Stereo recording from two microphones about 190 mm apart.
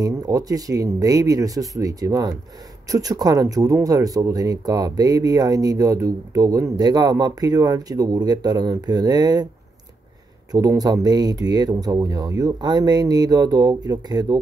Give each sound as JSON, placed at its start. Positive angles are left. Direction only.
{"t": 0.0, "sound": "speech", "side_deg": -20}
{"t": 10.5, "sound": "speech", "side_deg": -20}